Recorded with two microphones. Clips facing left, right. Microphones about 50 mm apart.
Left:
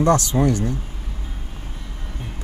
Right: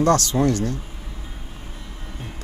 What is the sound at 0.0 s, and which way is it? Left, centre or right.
Speech, left.